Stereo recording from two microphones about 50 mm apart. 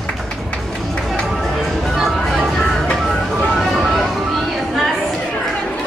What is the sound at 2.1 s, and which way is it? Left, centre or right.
Music, centre.